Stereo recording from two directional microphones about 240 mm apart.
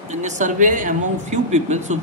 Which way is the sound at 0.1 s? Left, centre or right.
Right.